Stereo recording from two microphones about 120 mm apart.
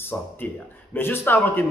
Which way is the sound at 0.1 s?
10° left (ahead or behind).